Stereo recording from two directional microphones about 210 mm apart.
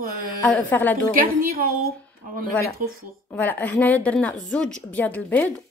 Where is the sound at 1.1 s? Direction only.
45° right (ahead or behind).